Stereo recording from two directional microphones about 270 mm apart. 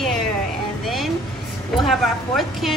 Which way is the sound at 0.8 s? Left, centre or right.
Centre.